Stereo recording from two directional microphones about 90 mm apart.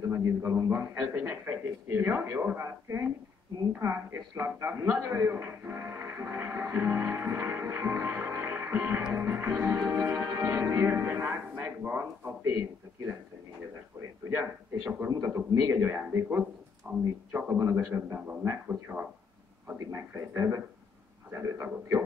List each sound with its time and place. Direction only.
0.1 s a man's voice: 30° right (ahead or behind)
3.8 s a sound: 30° right (ahead or behind)
9.1 s music: 25° right (ahead or behind)
14.3 s a man's voice: 25° right (ahead or behind)
17.3 s a man's voice: 20° right (ahead or behind)